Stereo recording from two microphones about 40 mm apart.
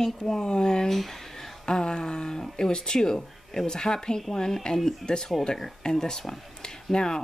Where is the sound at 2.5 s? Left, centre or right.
Centre.